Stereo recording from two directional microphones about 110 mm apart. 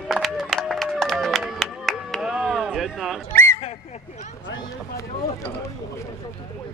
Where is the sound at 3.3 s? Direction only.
25° left (ahead or behind).